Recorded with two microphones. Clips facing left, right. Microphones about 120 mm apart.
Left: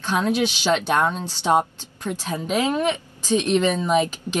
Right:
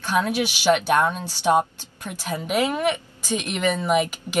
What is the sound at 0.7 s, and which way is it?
Speech, 25° left (ahead or behind).